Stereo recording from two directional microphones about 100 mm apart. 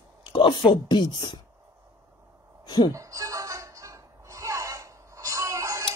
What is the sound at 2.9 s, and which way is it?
Music, 35° right (ahead or behind).